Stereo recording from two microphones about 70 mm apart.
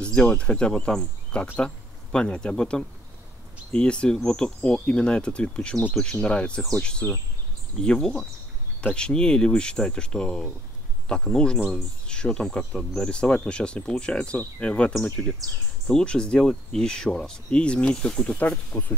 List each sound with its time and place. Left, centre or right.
0.0 s speech: centre